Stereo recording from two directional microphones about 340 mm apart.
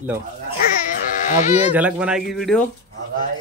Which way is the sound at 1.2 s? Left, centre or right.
Left.